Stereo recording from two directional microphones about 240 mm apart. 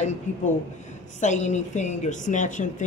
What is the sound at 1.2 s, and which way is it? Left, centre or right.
A woman's voice, left.